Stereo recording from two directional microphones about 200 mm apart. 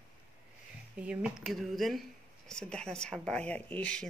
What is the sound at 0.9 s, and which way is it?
Speech, 5° right (ahead or behind).